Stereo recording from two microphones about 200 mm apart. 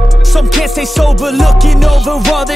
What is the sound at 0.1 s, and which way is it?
Music, centre (ahead or behind).